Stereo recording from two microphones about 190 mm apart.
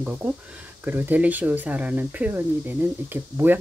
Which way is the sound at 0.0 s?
5° right (ahead or behind).